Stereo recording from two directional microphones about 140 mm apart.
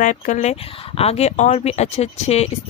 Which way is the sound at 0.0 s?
65° left (ahead or behind).